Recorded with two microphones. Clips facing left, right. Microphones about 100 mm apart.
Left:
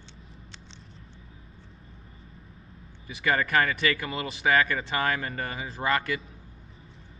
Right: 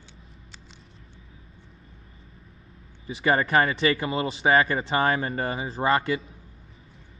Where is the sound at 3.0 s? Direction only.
30° right (ahead or behind).